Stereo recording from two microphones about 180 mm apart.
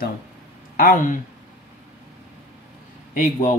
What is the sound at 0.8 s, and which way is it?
Speech, 50° left (ahead or behind).